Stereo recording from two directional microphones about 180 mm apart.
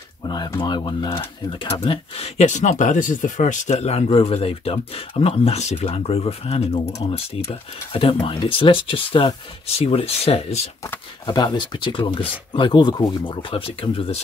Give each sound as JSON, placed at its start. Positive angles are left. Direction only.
{"t": 0.3, "sound": "speech", "side_deg": 25}
{"t": 11.2, "sound": "speech", "side_deg": 25}